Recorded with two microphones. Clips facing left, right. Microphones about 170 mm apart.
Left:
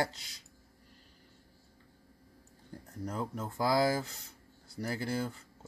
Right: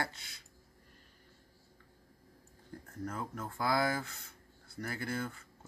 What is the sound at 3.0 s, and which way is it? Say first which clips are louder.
Speech: left 3 dB; 15° left (ahead or behind).